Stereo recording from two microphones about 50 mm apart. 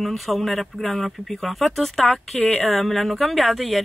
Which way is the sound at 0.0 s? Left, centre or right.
Centre.